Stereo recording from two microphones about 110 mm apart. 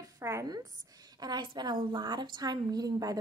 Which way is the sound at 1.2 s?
40° right (ahead or behind).